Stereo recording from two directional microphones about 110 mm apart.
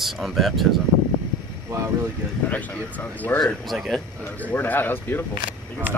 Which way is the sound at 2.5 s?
15° left (ahead or behind).